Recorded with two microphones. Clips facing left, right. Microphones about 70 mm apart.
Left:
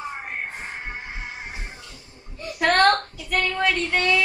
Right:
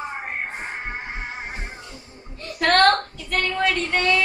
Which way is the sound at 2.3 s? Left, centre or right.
Centre.